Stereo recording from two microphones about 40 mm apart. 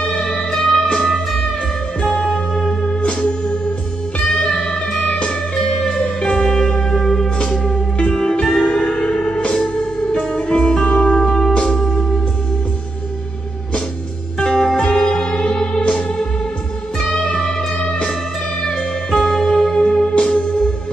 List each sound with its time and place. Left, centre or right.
0.0 s music: left
2.2 s music: centre
2.8 s music: left
14.4 s music: centre
17.1 s music: centre